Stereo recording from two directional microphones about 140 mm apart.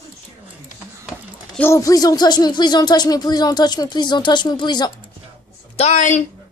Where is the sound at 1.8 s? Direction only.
25° left (ahead or behind).